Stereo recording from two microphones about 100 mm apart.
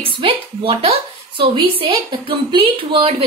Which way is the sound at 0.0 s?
65° right (ahead or behind).